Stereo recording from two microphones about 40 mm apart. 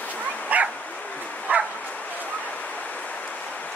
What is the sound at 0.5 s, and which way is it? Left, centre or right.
Bow-wow, right.